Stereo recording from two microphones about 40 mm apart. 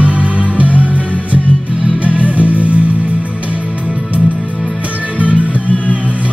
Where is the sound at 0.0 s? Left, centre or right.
Right.